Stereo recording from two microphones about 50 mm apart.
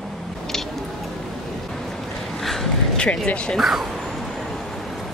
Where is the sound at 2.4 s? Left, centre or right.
Centre.